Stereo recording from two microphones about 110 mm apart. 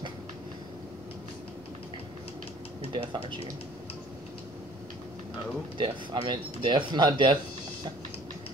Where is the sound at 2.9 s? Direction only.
45° right (ahead or behind).